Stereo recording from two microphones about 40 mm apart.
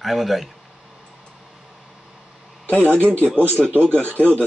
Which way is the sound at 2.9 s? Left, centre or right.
Right.